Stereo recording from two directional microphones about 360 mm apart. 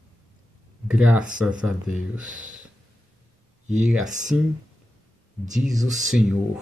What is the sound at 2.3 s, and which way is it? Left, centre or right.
Speech, right.